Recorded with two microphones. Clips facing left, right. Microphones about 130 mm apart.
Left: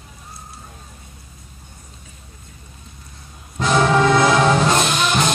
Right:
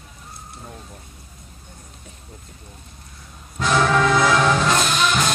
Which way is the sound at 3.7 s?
25° left (ahead or behind).